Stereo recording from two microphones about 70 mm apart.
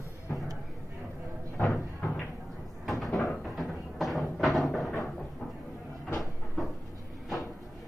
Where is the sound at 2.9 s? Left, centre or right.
Centre.